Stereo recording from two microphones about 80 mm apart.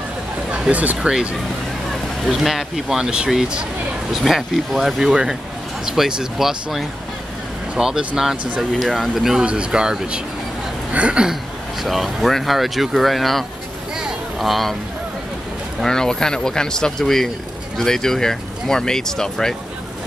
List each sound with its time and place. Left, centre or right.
0.5 s speech: centre
1.1 s speech: centre
11.8 s speech: centre
15.8 s speech: centre